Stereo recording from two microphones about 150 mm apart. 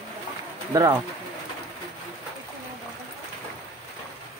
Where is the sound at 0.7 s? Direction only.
20° right (ahead or behind).